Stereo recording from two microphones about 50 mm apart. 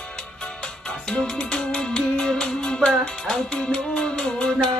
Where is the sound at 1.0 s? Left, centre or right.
Centre.